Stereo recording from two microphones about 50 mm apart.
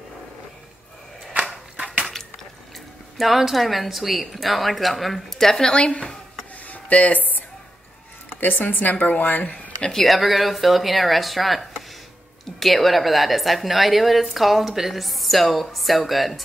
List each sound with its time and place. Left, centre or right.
3.2 s a woman's voice: centre; by 9.6 s left
9.8 s speech: centre
10.0 s a woman's voice: centre